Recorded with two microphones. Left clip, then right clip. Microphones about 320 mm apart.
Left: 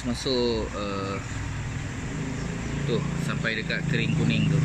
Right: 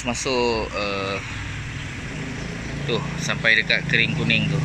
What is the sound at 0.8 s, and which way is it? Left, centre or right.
Speech, centre.